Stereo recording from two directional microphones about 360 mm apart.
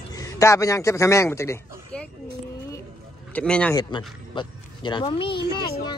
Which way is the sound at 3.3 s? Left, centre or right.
Centre.